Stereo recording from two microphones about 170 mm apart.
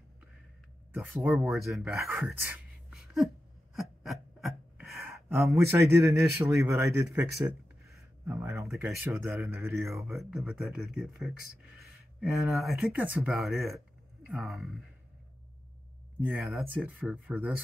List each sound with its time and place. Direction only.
0.9 s speech: 5° right (ahead or behind)
2.0 s speech: 15° right (ahead or behind)
2.9 s a sound: centre (ahead or behind)
5.7 s speech: 15° right (ahead or behind)
8.7 s speech: 5° right (ahead or behind)
9.5 s speech: 15° right (ahead or behind)
9.8 s speech: centre (ahead or behind)
16.2 s speech: 10° right (ahead or behind)
16.4 s speech: centre (ahead or behind)